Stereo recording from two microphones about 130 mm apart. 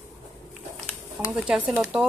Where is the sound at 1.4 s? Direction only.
5° right (ahead or behind).